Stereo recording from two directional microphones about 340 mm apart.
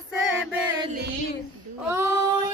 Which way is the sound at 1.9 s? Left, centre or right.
Centre.